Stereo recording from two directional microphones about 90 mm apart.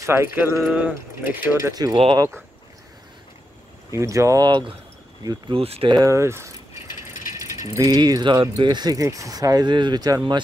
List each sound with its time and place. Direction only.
0.0 s speech: 30° right (ahead or behind)
1.6 s speech: 45° right (ahead or behind)
3.9 s speech: 35° right (ahead or behind)
5.5 s speech: 90° right
6.0 s mechanisms: 30° right (ahead or behind); by 10.4 s 50° right (ahead or behind)